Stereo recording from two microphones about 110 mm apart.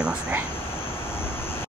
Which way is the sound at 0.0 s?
10° right (ahead or behind).